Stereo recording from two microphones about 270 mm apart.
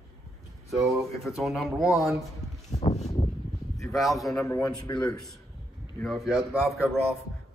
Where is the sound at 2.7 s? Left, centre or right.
Left.